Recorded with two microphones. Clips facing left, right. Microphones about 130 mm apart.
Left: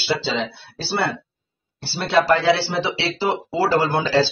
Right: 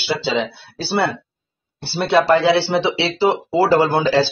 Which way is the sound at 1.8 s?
15° right (ahead or behind).